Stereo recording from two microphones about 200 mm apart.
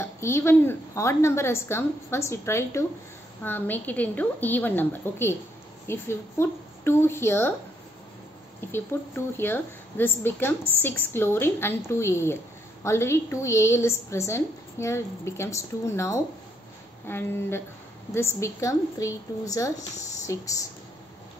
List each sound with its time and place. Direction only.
0.0 s a woman's voice: 10° left (ahead or behind)
8.5 s a woman's voice: 10° left (ahead or behind)